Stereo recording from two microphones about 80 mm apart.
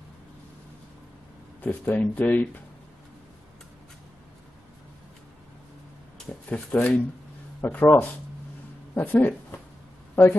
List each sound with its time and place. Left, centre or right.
1.6 s speech: left
6.5 s speech: centre